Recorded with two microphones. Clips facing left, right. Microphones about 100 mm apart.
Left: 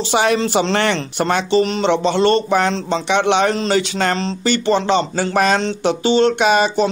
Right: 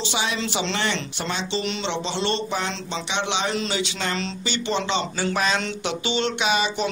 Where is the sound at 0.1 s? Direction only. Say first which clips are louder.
Left 13 dB; 55° left (ahead or behind).